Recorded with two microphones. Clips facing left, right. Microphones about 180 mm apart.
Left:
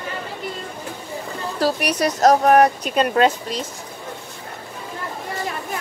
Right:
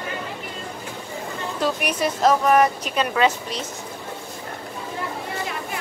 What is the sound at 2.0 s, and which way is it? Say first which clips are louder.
Speech: left 4 dB; 40° left (ahead or behind).